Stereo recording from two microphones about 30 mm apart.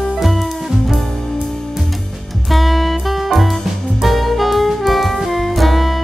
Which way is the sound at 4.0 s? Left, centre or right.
Centre.